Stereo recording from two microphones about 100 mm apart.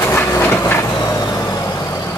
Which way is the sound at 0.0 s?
25° left (ahead or behind).